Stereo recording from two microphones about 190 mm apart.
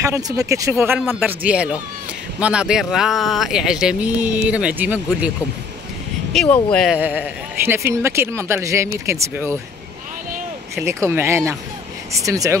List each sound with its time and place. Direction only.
0.0 s speech: 15° right (ahead or behind)
6.3 s speech: 5° left (ahead or behind)
7.0 s speech: 10° right (ahead or behind)
10.9 s speech: 10° right (ahead or behind)